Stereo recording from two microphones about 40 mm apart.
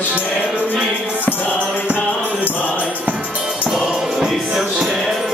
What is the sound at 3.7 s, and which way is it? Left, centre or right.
Music, centre.